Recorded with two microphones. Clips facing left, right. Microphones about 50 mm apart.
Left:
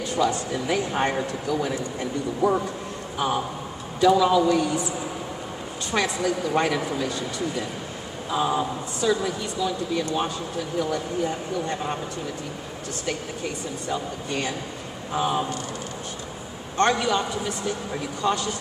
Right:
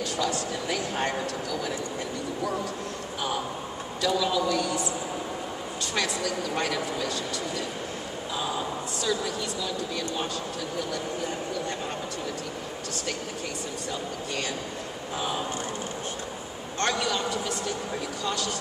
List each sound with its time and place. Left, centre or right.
0.1 s speech: left
4.0 s speech: left
5.9 s speech: centre
13.8 s speech: left
16.7 s speech: centre